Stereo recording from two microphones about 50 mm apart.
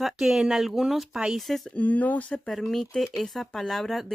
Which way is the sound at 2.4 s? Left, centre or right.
Centre.